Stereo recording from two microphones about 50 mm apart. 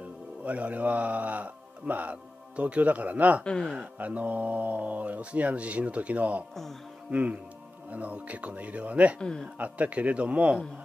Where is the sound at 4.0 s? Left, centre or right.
Right.